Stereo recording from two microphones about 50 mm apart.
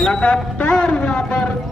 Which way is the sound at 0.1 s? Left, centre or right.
Left.